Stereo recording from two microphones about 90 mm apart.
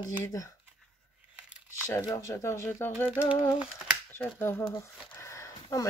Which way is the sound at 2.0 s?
35° left (ahead or behind).